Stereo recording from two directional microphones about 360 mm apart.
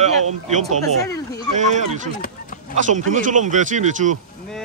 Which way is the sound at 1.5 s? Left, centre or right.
Centre.